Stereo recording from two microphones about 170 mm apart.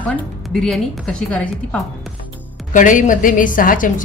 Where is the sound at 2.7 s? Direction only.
50° left (ahead or behind).